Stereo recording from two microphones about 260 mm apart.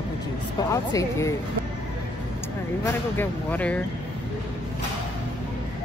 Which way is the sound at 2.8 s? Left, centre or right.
Centre.